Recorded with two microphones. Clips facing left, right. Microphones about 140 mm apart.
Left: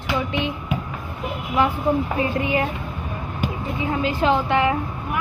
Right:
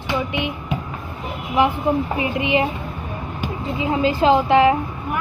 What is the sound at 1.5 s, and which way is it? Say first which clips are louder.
Speech: right 2 dB; 15° right (ahead or behind).